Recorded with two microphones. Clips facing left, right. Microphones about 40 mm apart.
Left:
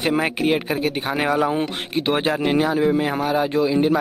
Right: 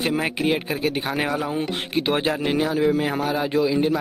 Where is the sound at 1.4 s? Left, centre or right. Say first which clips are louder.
Left 5 dB; left.